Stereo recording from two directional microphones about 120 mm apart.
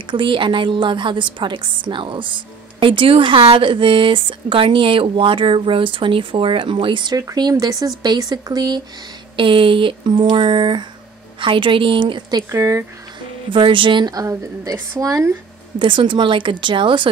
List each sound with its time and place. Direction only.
0.0 s a woman's voice: 45° right (ahead or behind)
9.4 s a woman's voice: 45° right (ahead or behind)
12.4 s speech: 25° right (ahead or behind)
13.5 s a woman's voice: 45° right (ahead or behind); by 15.3 s 30° right (ahead or behind)
15.8 s a woman's voice: 45° right (ahead or behind)